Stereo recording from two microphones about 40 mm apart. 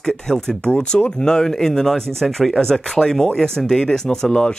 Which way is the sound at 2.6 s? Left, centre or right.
Centre.